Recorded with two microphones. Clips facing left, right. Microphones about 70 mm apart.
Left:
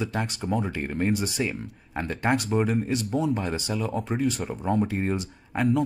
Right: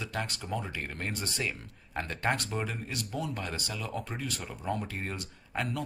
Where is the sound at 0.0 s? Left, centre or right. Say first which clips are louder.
Left 7 dB; centre.